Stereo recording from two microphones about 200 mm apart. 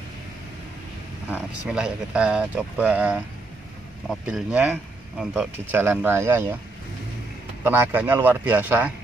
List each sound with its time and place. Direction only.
1.3 s speech: 5° right (ahead or behind)
7.6 s speech: 10° right (ahead or behind)